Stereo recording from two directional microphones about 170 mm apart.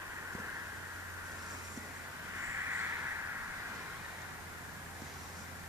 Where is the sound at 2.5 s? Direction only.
15° right (ahead or behind).